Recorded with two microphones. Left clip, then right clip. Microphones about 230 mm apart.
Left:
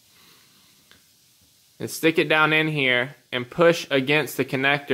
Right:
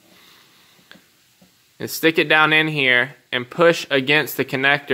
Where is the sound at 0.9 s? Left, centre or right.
Centre.